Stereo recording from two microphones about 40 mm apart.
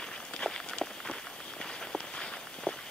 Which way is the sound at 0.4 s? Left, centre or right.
Left.